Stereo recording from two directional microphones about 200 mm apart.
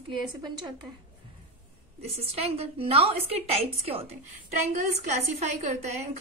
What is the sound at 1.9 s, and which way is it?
A woman's voice, 30° right (ahead or behind).